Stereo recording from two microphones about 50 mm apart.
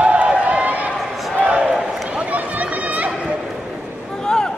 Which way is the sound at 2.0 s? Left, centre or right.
Right.